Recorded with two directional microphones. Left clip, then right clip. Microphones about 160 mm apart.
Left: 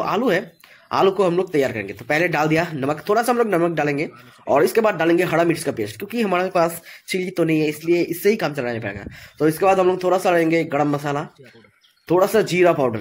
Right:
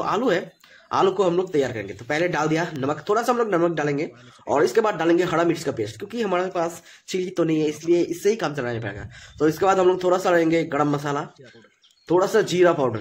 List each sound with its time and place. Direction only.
0.0 s speech: 10° left (ahead or behind)
6.5 s a woman's voice: 25° left (ahead or behind)
7.1 s speech: 10° left (ahead or behind)